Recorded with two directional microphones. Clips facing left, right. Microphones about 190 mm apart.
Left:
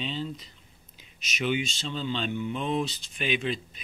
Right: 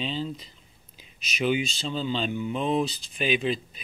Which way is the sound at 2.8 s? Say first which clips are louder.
Right 3 dB; 35° right (ahead or behind).